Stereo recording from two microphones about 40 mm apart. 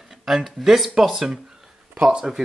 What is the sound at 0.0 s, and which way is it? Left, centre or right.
Speech, centre.